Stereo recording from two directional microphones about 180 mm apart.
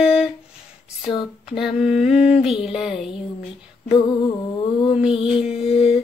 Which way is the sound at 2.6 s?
Centre (ahead or behind).